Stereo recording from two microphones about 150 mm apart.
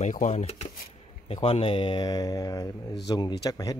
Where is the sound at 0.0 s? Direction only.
55° left (ahead or behind).